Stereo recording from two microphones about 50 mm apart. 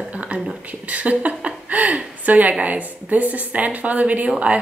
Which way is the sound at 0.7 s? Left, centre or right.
Right.